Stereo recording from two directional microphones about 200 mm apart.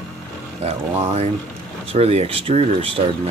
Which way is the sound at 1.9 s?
30° right (ahead or behind).